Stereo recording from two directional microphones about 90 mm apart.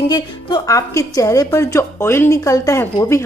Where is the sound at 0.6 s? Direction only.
40° left (ahead or behind).